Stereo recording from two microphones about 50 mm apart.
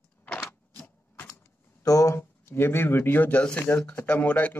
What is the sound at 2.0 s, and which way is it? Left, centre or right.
Speech, left.